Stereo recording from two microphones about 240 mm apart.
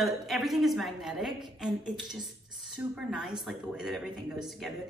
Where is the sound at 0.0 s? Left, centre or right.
Centre.